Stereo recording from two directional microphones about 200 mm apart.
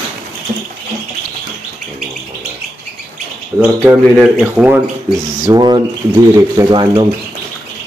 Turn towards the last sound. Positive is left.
turn(degrees=-20)  # may be behind; listen again after turning